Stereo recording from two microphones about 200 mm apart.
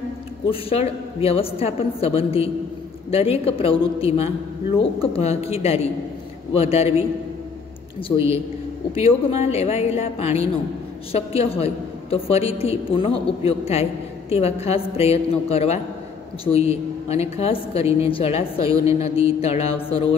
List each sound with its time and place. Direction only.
0.5 s a woman's voice: 30° left (ahead or behind)
8.9 s a woman's voice: 30° left (ahead or behind)